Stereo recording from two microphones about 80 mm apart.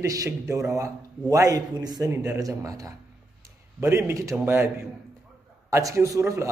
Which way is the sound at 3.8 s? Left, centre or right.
Right.